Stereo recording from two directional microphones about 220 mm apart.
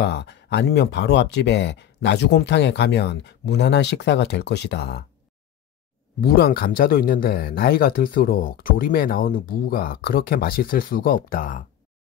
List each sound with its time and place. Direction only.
0.0 s speech: 50° left (ahead or behind)
6.2 s speech: 40° left (ahead or behind)